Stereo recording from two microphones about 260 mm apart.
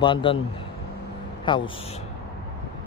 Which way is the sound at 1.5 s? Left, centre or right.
Centre.